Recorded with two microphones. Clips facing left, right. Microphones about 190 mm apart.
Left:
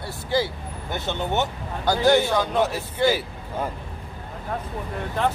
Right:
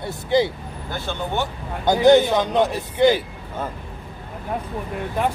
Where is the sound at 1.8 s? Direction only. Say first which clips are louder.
Right 5 dB; 20° right (ahead or behind).